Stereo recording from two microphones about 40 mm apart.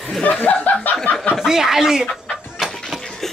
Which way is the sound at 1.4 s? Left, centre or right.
Centre.